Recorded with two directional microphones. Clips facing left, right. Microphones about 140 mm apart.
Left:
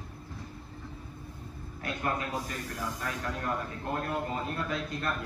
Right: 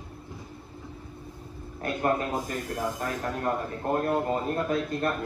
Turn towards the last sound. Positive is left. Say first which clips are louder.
# right 6 dB
turn(degrees=-45)  # may be behind; listen again after turning